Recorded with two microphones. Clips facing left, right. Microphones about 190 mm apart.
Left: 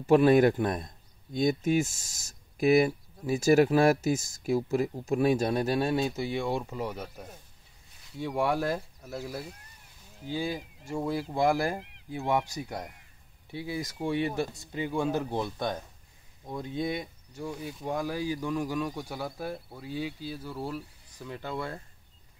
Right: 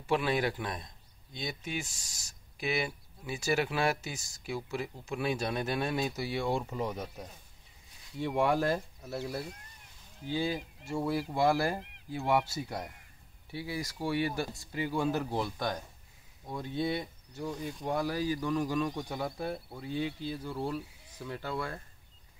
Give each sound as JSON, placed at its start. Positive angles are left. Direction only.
{"t": 0.0, "sound": "speech", "side_deg": 45}
{"t": 6.6, "sound": "speech", "side_deg": 5}
{"t": 8.4, "sound": "speech", "side_deg": 10}
{"t": 10.2, "sound": "speech", "side_deg": 10}
{"t": 21.3, "sound": "speech", "side_deg": 15}